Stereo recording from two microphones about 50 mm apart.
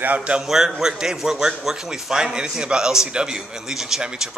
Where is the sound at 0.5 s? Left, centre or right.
Centre.